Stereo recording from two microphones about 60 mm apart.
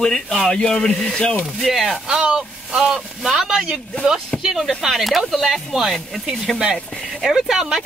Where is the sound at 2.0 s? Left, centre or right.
Centre.